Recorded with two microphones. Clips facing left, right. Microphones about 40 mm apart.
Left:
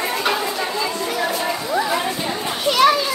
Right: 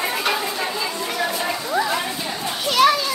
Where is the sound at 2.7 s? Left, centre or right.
Centre.